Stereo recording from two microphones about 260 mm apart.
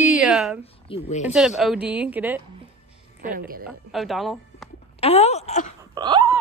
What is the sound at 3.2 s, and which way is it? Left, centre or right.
Speech, right.